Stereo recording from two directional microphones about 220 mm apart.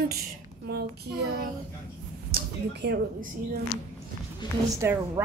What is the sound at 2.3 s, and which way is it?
Speech, 50° right (ahead or behind).